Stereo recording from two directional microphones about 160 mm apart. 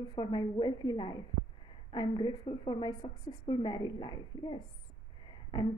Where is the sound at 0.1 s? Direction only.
25° left (ahead or behind).